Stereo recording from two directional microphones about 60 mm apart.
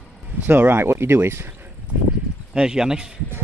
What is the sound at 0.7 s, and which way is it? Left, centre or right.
Speech, right.